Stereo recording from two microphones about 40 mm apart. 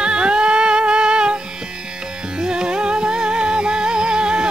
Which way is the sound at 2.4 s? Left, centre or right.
Right.